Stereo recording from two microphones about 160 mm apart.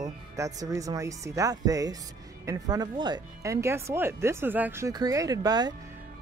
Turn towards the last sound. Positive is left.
turn(degrees=-25)  # may be behind; listen again after turning